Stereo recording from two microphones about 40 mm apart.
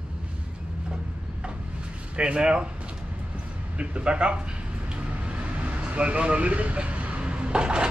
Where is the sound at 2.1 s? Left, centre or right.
Right.